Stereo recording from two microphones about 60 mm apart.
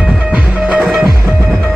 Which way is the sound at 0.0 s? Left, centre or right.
Right.